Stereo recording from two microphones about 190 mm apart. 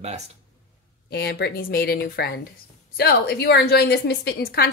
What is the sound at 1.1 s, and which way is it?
A woman's voice, 55° left (ahead or behind).